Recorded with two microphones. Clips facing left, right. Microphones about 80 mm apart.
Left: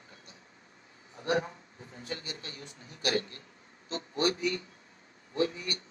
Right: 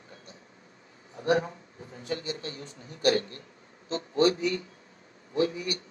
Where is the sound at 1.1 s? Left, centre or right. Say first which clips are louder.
Right 4 dB; right.